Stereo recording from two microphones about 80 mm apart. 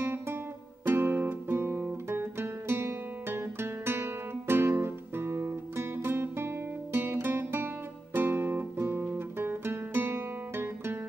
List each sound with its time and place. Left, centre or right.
0.0 s music: right
0.8 s guitar: right